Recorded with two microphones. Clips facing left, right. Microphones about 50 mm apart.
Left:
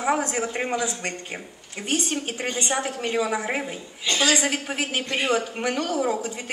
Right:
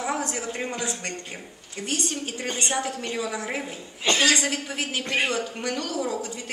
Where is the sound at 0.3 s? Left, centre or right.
Left.